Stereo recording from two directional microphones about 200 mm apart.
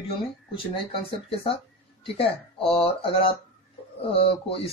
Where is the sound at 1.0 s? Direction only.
25° left (ahead or behind).